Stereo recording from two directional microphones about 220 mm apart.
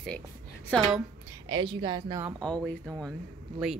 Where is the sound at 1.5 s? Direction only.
20° right (ahead or behind).